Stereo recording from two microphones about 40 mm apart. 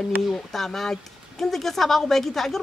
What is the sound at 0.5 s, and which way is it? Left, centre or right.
A woman's voice, centre.